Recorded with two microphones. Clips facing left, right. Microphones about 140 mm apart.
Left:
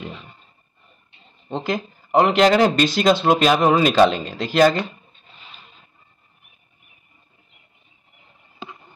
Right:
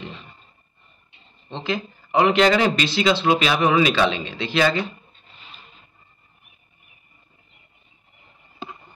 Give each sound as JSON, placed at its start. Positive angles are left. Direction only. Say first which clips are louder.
{"t": 1.5, "sound": "a man's voice", "louder": "left 2 dB", "side_deg": 40}